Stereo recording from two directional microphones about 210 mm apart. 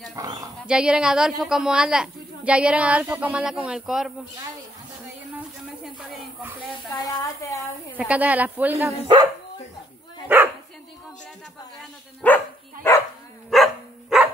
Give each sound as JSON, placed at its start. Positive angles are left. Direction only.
{"t": 0.1, "sound": "speech", "side_deg": -15}
{"t": 0.7, "sound": "a woman's voice", "side_deg": -5}
{"t": 5.9, "sound": "a sound", "side_deg": 0}
{"t": 6.9, "sound": "a woman's voice", "side_deg": 15}
{"t": 8.0, "sound": "speech", "side_deg": -5}
{"t": 9.0, "sound": "speech", "side_deg": -20}
{"t": 10.2, "sound": "dog", "side_deg": -10}
{"t": 12.2, "sound": "dog", "side_deg": 5}
{"t": 13.5, "sound": "dog", "side_deg": 0}